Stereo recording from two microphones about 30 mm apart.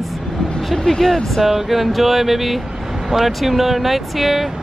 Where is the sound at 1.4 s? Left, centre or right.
Centre.